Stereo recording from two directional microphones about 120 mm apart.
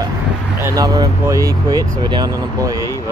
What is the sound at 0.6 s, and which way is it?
Speech, 25° right (ahead or behind).